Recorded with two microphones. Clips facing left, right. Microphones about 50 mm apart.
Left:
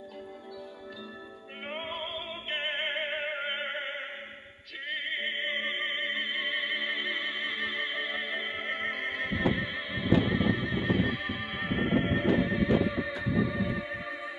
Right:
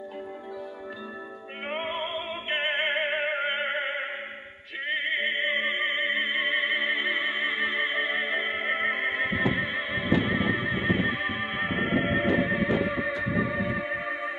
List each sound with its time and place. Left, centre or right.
1.7 s music: right
4.8 s opera: right
13.3 s music: right